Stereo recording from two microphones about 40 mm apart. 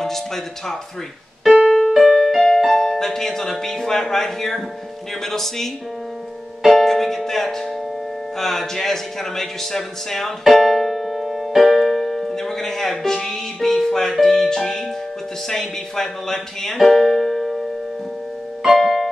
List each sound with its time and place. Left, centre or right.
1.5 s keyboard: centre
2.0 s speech: centre
6.6 s music: centre
8.4 s a sound: centre
14.2 s music: centre
15.4 s speech: centre
16.8 s music: centre
18.8 s piano: centre